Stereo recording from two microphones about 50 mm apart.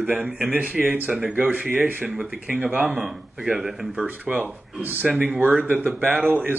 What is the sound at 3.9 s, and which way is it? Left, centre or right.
Speech, right.